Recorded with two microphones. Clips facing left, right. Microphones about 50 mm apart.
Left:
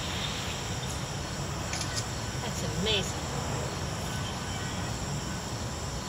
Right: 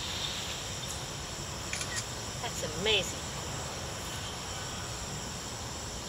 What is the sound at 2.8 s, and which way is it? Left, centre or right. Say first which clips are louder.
Speech: right 1 dB; right.